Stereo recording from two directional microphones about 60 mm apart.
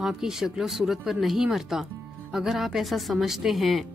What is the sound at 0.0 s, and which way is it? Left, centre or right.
A woman's voice, centre.